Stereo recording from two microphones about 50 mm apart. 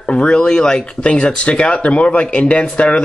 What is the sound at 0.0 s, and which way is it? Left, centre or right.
Speech, left.